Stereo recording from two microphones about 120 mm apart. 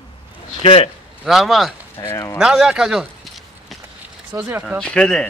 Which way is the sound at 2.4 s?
5° right (ahead or behind).